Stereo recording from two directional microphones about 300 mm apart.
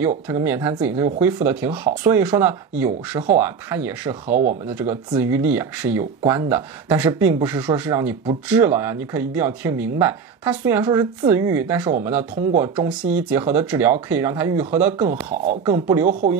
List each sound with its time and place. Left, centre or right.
0.3 s speech: centre
4.3 s speech: right
4.7 s speech: centre
15.0 s speech: centre
16.1 s speech: right